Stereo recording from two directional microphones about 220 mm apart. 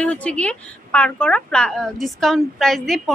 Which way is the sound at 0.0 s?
5° left (ahead or behind).